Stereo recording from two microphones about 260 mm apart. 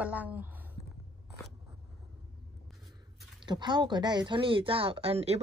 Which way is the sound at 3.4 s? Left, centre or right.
Centre.